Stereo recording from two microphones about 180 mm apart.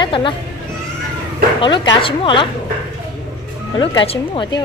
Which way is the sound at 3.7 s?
25° left (ahead or behind).